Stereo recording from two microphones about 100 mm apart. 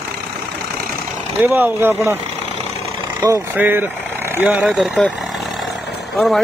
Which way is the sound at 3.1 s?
35° right (ahead or behind).